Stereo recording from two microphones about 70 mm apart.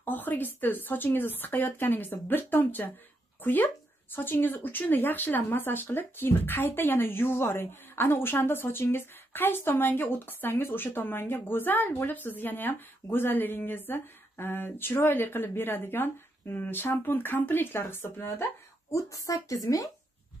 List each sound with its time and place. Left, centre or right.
0.0 s a woman's voice: left
18.9 s a woman's voice: left